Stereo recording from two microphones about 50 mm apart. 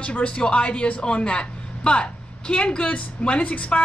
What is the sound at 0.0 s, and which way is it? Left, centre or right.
A woman's voice, left.